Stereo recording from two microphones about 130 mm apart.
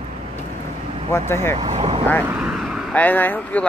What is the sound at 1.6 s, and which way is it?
Speech, 50° right (ahead or behind).